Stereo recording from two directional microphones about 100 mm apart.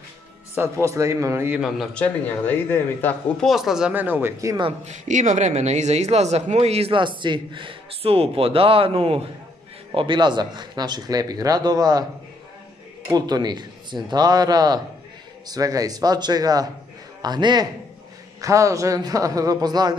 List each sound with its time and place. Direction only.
0.6 s a man's voice: 30° right (ahead or behind)
2.0 s speech: 20° left (ahead or behind)
3.3 s speech: centre (ahead or behind)
3.9 s a man's voice: 20° right (ahead or behind)
5.5 s speech: 90° right
6.9 s speech: 55° right (ahead or behind); by 9.2 s 70° right (ahead or behind)
9.9 s speech: 50° right (ahead or behind)
13.1 s a man's voice: 45° right (ahead or behind)
18.4 s a man's voice: 35° right (ahead or behind)